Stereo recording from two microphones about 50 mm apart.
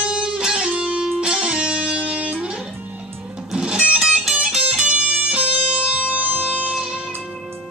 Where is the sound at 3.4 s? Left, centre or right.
Centre.